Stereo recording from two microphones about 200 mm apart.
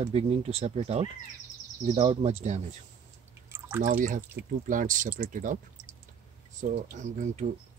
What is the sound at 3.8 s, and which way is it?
Speech, 40° right (ahead or behind).